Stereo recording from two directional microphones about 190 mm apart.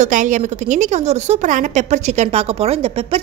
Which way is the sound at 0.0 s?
40° right (ahead or behind).